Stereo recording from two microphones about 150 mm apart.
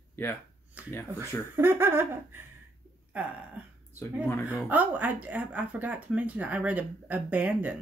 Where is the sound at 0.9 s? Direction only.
15° left (ahead or behind).